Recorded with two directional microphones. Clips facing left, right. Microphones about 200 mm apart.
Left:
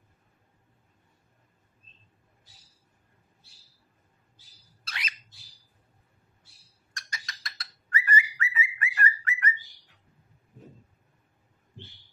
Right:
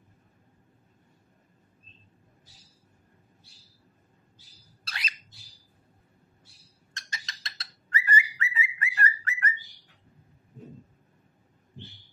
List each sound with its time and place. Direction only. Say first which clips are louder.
4.8 s a sound: even; 35° right (ahead or behind)
6.9 s bird: left 1 dB; 25° right (ahead or behind)
9.0 s bird: even; 40° right (ahead or behind)